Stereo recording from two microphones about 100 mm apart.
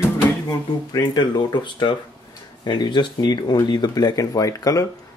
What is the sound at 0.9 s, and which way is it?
Speech, 45° left (ahead or behind).